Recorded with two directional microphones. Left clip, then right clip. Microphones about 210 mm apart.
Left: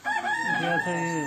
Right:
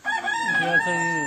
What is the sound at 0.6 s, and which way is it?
Speech, 20° right (ahead or behind).